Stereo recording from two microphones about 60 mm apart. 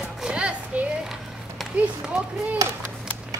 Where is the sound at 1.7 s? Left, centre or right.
Centre.